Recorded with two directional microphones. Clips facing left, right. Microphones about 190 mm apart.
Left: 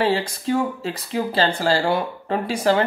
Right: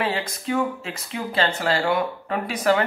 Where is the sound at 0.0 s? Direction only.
30° left (ahead or behind).